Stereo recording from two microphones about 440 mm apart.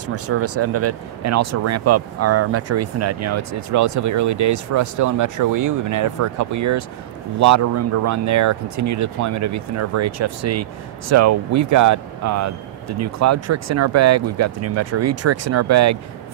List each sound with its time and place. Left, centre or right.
0.0 s speech: right